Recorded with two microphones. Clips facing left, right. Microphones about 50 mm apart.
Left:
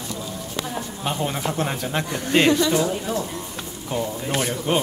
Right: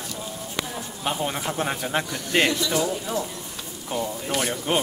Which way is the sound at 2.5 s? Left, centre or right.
Left.